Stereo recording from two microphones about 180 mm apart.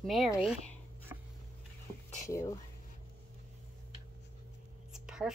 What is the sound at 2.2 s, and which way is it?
Speech, 15° left (ahead or behind).